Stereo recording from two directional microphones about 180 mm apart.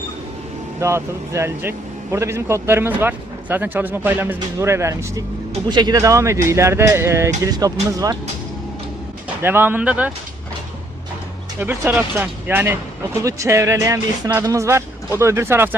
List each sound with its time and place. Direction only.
0.7 s speech: 15° right (ahead or behind)
9.4 s speech: 10° right (ahead or behind)
11.6 s speech: 10° right (ahead or behind)